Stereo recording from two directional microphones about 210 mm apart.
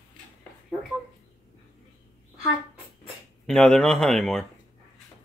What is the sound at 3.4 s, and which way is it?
Speech, 5° left (ahead or behind).